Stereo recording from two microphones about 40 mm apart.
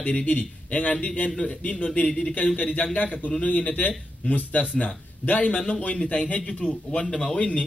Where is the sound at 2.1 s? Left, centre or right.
Centre.